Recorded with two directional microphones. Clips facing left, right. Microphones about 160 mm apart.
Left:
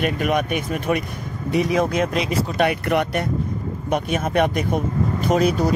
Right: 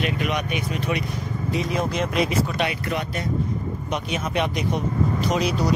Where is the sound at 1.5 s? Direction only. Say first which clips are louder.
Left 6 dB; 60° left (ahead or behind).